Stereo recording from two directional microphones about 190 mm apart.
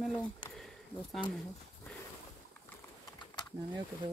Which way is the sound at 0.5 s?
Centre (ahead or behind).